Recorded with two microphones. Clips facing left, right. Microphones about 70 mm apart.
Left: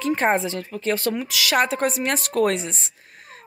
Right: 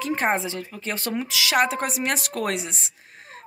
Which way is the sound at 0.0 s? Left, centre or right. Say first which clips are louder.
Left 3 dB; centre.